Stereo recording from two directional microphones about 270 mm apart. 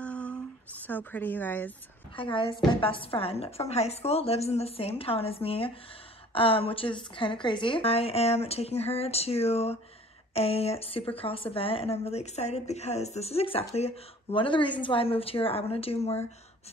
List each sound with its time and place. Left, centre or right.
0.0 s a sound: centre
0.8 s a woman's voice: centre
2.1 s speech: centre